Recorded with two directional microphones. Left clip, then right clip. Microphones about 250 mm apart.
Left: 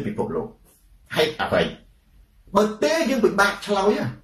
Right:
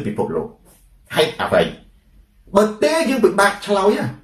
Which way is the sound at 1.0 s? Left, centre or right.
Centre.